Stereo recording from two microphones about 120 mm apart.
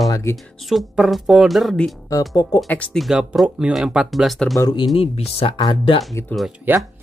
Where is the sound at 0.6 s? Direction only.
5° right (ahead or behind).